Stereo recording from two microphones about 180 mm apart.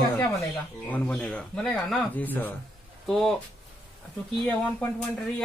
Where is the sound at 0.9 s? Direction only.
10° left (ahead or behind).